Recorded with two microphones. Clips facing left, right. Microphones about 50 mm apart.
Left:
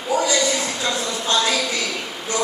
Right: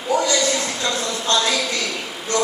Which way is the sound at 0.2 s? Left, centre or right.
Centre.